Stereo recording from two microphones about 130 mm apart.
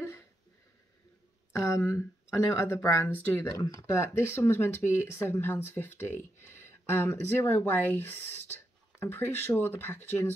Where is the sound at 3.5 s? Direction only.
25° left (ahead or behind).